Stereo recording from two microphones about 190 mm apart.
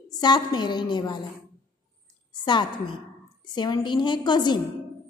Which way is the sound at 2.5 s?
25° left (ahead or behind).